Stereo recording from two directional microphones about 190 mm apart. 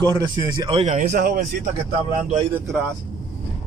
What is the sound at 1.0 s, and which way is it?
Speech, 50° right (ahead or behind).